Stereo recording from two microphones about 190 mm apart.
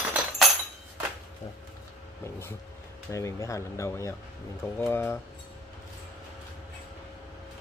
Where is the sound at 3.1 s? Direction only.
15° left (ahead or behind).